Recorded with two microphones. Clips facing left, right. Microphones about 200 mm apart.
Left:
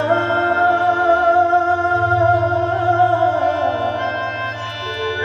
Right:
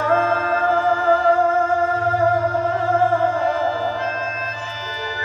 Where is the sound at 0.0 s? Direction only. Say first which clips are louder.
Left 2 dB; 70° left (ahead or behind).